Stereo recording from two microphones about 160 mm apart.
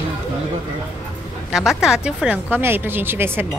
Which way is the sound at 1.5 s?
5° right (ahead or behind).